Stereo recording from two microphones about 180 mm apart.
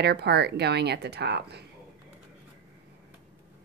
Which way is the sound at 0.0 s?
65° right (ahead or behind).